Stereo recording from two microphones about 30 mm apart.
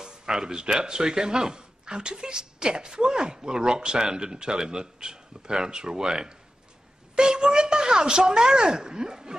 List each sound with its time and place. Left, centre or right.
0.0 s a woman's voice: right